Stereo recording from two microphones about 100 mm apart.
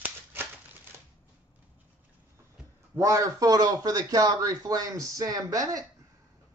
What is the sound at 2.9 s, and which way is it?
A man's voice, 35° right (ahead or behind).